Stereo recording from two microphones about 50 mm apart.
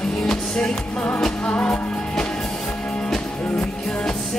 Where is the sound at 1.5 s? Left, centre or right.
Left.